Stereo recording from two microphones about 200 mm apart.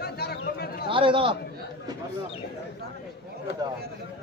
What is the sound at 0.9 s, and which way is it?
Speech, 25° right (ahead or behind).